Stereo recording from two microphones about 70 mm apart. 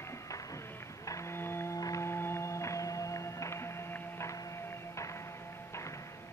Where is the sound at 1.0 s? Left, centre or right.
Left.